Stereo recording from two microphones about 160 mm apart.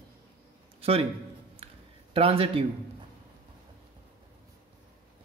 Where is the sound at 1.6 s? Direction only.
40° right (ahead or behind).